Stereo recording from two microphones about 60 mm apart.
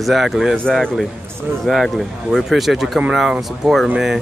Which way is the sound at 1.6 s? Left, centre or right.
Centre.